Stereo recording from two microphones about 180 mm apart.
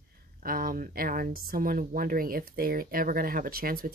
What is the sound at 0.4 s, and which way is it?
Speech, 50° right (ahead or behind).